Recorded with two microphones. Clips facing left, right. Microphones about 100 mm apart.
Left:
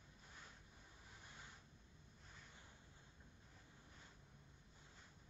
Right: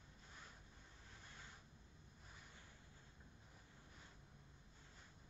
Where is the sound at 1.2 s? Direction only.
15° left (ahead or behind).